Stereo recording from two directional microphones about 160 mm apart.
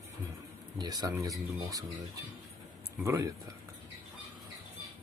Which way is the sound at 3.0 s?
20° right (ahead or behind).